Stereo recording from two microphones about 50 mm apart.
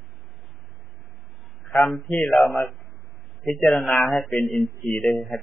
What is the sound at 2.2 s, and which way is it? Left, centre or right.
Speech, centre.